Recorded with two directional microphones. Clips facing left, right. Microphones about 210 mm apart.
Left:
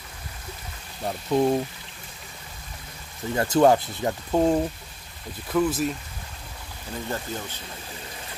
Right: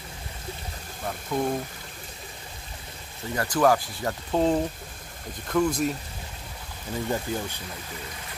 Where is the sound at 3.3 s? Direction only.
25° left (ahead or behind).